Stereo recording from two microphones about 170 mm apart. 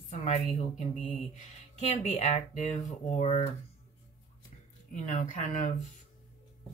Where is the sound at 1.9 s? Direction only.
40° left (ahead or behind).